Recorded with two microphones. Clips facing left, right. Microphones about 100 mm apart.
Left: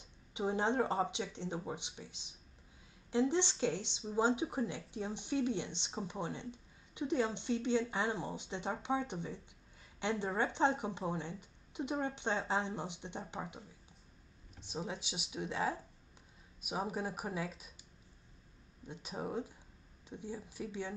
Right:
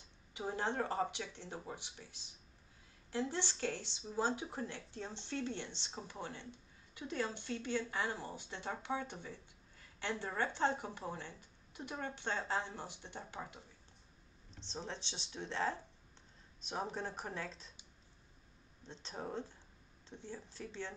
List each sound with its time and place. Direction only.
0.0 s speech: 20° left (ahead or behind)
18.9 s speech: 10° left (ahead or behind)